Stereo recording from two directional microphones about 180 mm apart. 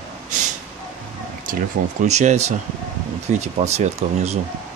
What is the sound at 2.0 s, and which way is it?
Speech, 40° right (ahead or behind).